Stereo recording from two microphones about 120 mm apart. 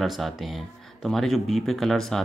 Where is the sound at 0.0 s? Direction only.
Centre (ahead or behind).